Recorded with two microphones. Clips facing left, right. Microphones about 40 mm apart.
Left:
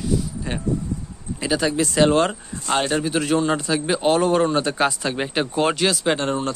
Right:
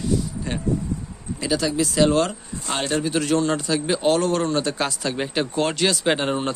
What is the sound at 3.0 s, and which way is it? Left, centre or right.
A man's voice, centre.